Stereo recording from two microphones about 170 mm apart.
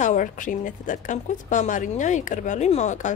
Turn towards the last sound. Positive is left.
turn(degrees=45)  # may be behind; listen again after turning